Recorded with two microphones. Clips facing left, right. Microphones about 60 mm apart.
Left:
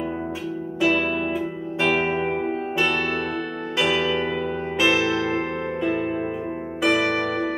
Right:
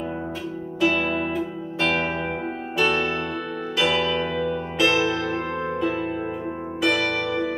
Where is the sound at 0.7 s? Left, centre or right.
Centre.